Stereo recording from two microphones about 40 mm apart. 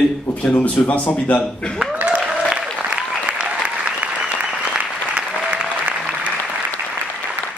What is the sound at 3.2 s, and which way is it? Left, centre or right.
Applause, right.